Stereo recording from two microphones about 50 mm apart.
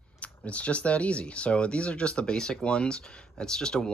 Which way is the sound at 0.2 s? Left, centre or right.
Left.